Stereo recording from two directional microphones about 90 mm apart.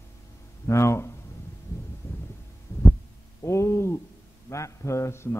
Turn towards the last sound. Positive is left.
turn(degrees=30)  # may be behind; listen again after turning